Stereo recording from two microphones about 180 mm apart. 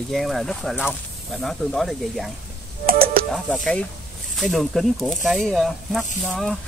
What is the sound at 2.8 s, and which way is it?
Computer keyboard, 55° right (ahead or behind).